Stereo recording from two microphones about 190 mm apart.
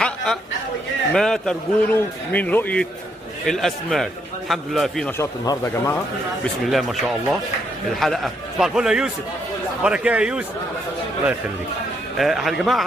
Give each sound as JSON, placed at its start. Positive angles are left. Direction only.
{"t": 0.0, "sound": "a sound", "side_deg": 5}
{"t": 1.1, "sound": "a man's voice", "side_deg": 5}
{"t": 5.2, "sound": "speech", "side_deg": 15}
{"t": 6.4, "sound": "a man's voice", "side_deg": 0}
{"t": 12.2, "sound": "a man's voice", "side_deg": 0}